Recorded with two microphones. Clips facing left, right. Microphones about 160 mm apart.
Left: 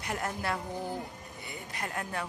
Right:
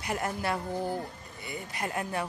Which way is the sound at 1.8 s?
10° right (ahead or behind).